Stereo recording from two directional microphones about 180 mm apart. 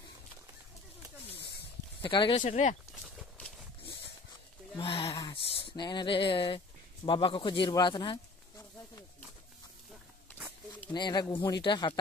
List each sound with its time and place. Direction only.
1.3 s a sound: 65° left (ahead or behind)
2.0 s speech: 25° left (ahead or behind)
2.4 s speech: 40° left (ahead or behind)
4.7 s speech: 30° left (ahead or behind)
5.1 s speech: 20° left (ahead or behind)
10.9 s speech: 25° left (ahead or behind)